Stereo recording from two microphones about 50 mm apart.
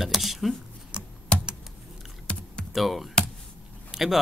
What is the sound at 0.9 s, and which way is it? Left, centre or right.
Computer keyboard, centre.